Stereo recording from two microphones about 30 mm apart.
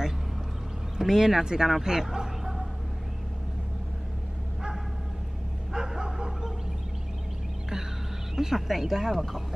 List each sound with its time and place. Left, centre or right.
0.9 s speech: centre
5.7 s bow-wow: right
8.4 s speech: centre